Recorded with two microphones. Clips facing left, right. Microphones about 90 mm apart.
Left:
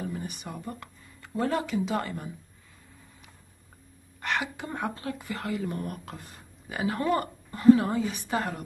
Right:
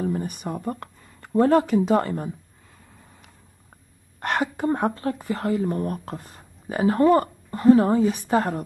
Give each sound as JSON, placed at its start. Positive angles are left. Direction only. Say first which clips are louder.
{"t": 0.0, "sound": "speech", "louder": "right 9 dB", "side_deg": -45}
{"t": 4.2, "sound": "a woman's voice", "louder": "right 7 dB", "side_deg": -45}